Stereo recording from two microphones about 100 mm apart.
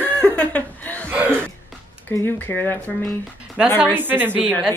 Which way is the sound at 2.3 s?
20° left (ahead or behind).